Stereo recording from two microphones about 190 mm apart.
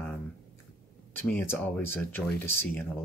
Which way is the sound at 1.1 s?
10° left (ahead or behind).